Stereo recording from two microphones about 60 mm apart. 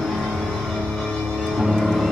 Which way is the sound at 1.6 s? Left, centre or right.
Centre.